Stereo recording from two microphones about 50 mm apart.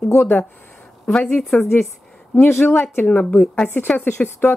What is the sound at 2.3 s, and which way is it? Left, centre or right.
Speech, left.